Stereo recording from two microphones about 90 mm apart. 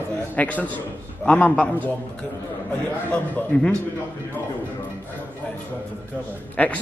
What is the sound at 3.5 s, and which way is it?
Speech, 15° left (ahead or behind).